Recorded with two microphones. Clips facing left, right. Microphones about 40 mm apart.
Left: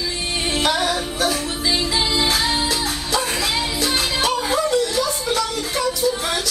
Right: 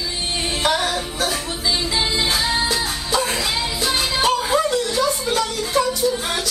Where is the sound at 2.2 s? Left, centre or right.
Right.